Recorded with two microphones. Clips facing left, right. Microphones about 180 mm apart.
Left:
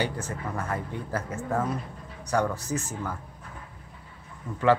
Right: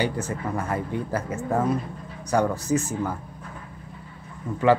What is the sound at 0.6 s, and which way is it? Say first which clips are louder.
Speech: right 4 dB; 10° right (ahead or behind).